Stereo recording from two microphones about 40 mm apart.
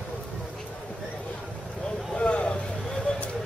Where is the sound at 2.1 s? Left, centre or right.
Left.